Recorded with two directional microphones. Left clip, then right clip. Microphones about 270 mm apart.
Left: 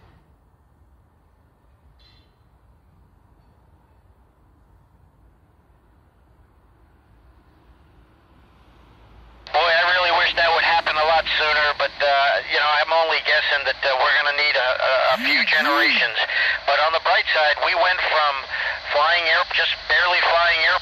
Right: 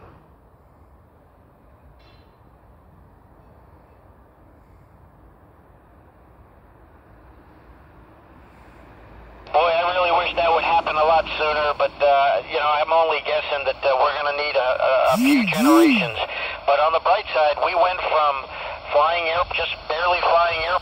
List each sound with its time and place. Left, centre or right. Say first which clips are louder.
9.5 s radio: left 1 dB; left